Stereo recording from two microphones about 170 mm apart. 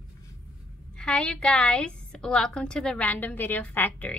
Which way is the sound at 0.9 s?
5° left (ahead or behind).